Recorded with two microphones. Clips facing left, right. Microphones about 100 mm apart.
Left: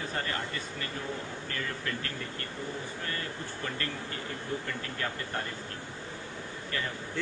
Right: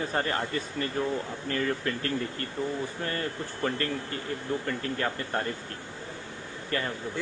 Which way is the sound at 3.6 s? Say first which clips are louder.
Right 8 dB; 40° right (ahead or behind).